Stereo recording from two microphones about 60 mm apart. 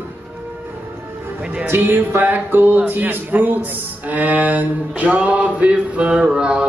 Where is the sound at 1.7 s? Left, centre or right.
Right.